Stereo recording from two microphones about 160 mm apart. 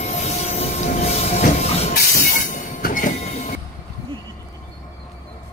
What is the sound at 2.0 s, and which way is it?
Train, 55° left (ahead or behind).